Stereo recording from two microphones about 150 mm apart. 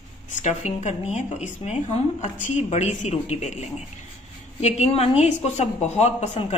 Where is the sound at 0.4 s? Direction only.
50° left (ahead or behind).